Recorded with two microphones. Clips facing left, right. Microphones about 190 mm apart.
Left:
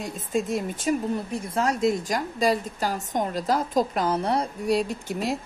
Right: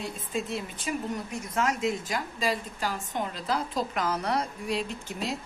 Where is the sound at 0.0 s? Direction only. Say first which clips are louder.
Left 5 dB; 45° left (ahead or behind).